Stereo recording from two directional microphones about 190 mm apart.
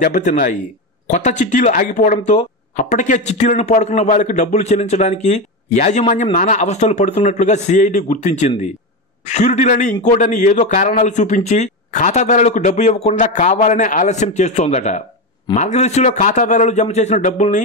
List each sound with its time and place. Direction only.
0.0 s speech: 45° left (ahead or behind)